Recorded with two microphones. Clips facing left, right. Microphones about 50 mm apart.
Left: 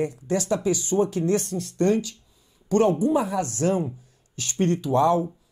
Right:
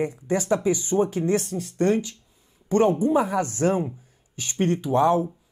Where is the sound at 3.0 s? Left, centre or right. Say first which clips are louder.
Right 1 dB; right.